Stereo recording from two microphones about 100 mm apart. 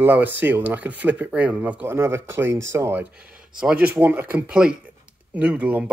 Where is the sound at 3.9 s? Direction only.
20° right (ahead or behind).